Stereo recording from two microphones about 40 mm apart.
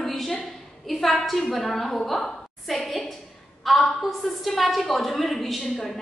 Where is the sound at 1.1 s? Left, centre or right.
Centre.